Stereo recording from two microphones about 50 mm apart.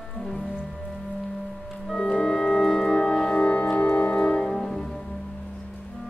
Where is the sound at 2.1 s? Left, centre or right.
Centre.